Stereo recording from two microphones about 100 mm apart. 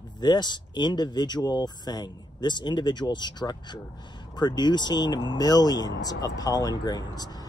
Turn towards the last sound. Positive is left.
turn(degrees=40)  # may be behind; listen again after turning